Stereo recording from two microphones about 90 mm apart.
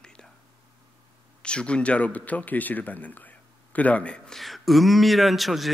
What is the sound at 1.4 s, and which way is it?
Speech, 10° left (ahead or behind).